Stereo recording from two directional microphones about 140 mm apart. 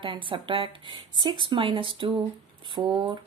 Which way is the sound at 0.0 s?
35° right (ahead or behind).